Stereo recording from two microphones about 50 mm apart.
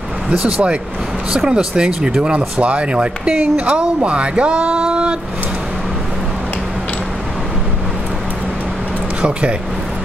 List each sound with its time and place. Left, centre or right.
0.3 s speech: right
1.5 s speech: centre
9.2 s speech: right